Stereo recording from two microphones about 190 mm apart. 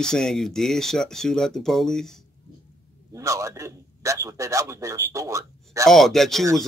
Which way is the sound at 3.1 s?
15° right (ahead or behind).